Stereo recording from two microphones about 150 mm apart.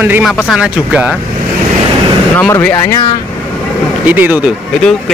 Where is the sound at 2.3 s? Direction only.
20° left (ahead or behind).